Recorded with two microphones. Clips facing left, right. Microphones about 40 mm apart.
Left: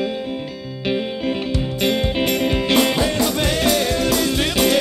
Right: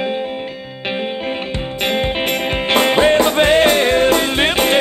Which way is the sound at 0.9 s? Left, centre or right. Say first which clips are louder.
Even; right.